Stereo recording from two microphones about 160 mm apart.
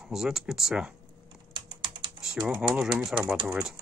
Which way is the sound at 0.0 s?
5° right (ahead or behind).